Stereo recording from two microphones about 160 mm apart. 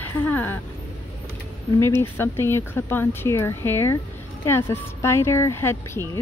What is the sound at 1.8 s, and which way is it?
Speech, 15° left (ahead or behind).